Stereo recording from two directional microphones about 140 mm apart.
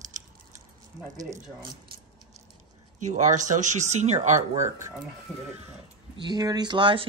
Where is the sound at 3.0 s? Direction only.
60° right (ahead or behind).